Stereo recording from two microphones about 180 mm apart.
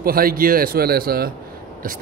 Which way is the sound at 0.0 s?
55° right (ahead or behind).